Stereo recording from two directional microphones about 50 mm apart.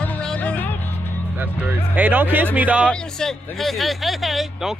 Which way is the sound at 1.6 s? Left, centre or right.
Right.